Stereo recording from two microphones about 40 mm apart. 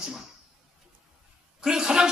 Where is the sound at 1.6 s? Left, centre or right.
Centre.